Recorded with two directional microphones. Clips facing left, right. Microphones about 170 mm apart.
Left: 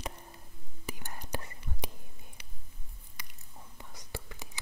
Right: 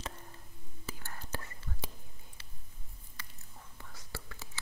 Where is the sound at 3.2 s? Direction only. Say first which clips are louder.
Even; 15° left (ahead or behind).